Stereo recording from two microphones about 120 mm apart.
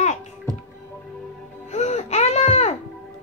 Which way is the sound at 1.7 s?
65° left (ahead or behind).